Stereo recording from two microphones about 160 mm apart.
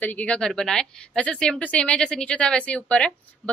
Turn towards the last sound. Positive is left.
turn(degrees=5)  # may be behind; listen again after turning